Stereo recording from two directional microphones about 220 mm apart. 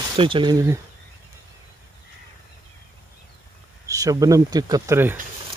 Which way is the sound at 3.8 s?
15° right (ahead or behind).